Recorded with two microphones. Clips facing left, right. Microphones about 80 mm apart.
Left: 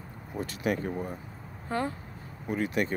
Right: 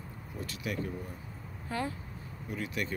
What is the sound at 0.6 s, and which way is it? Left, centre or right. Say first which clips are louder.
Speech: left 7 dB; left.